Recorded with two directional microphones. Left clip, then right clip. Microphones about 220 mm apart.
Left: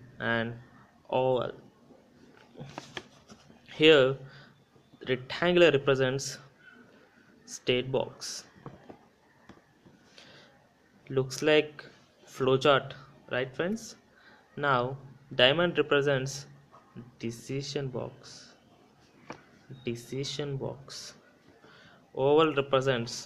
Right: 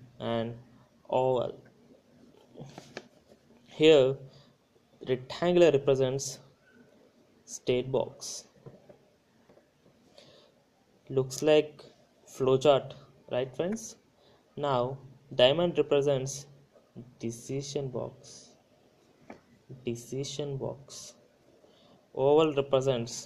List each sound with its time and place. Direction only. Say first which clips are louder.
0.2 s a man's voice: left 2 dB; centre (ahead or behind)
3.6 s a sound: even; centre (ahead or behind)
5.0 s a man's voice: left 1 dB; 5° right (ahead or behind)
7.4 s a man's voice: left 1 dB; centre (ahead or behind)
11.1 s a man's voice: right 1 dB; centre (ahead or behind)
18.2 s a sound: left 2 dB; centre (ahead or behind)
19.8 s a man's voice: even; centre (ahead or behind)